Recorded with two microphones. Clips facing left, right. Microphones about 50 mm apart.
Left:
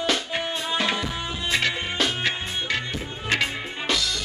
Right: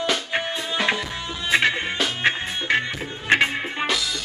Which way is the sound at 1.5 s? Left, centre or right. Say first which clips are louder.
Right 5 dB; right.